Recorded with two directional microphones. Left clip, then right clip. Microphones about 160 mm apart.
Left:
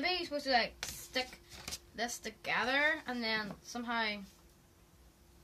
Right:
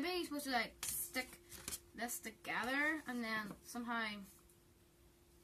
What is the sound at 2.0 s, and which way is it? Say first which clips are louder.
Speech: left 7 dB; 25° left (ahead or behind).